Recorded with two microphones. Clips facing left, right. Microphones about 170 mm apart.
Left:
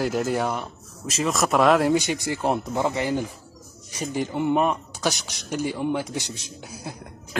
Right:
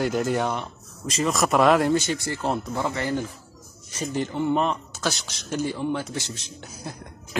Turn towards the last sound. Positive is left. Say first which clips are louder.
# left 1 dB
turn(degrees=10)  # may be behind; listen again after turning